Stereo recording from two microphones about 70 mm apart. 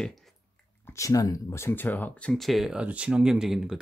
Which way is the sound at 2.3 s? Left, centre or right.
Centre.